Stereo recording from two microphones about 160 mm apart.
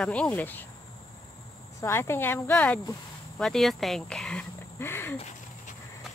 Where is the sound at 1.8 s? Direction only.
15° left (ahead or behind).